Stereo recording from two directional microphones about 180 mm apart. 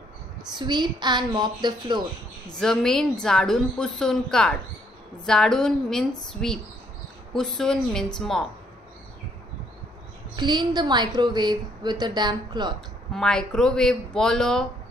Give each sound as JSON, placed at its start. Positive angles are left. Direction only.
{"t": 0.5, "sound": "a woman's voice", "side_deg": -25}
{"t": 2.6, "sound": "a woman's voice", "side_deg": 5}
{"t": 10.3, "sound": "a woman's voice", "side_deg": -25}
{"t": 13.1, "sound": "a woman's voice", "side_deg": 5}